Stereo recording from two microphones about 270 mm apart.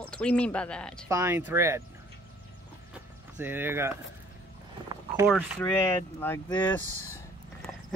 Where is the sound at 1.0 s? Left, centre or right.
Centre.